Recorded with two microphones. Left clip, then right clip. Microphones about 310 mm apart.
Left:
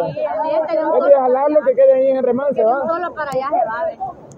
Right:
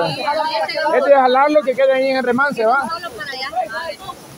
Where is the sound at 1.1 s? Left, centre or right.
Centre.